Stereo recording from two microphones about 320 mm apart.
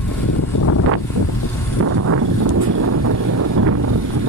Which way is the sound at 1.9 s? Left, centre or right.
Right.